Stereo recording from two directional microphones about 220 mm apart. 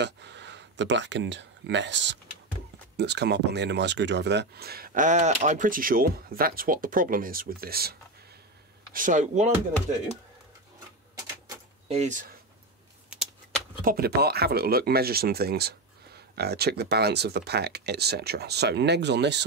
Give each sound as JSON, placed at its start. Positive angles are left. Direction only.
{"t": 0.0, "sound": "speech", "side_deg": -50}
{"t": 11.9, "sound": "speech", "side_deg": -35}
{"t": 13.8, "sound": "speech", "side_deg": -45}